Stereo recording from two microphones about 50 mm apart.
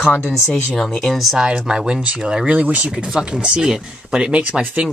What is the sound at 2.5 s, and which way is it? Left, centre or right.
Speech, right.